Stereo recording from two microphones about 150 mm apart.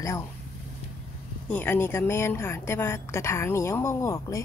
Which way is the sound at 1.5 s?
15° left (ahead or behind).